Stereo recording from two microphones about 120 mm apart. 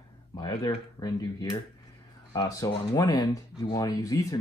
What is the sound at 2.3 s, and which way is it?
Speech, 30° left (ahead or behind).